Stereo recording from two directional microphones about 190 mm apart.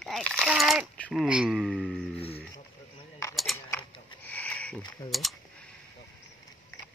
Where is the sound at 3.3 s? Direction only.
Centre (ahead or behind).